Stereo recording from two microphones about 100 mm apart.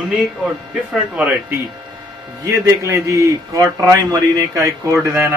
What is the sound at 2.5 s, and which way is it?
Speech, 30° right (ahead or behind).